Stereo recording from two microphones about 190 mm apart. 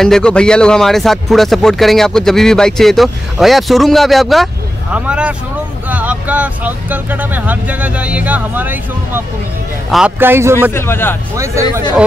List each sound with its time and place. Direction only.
0.0 s speech: 5° left (ahead or behind); by 10.7 s 10° right (ahead or behind)
10.7 s speech: 10° left (ahead or behind)
11.3 s speech: 15° right (ahead or behind)